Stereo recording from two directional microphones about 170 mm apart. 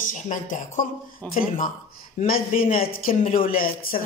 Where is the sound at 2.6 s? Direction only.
60° left (ahead or behind).